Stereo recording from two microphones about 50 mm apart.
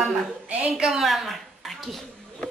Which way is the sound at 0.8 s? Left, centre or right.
Centre.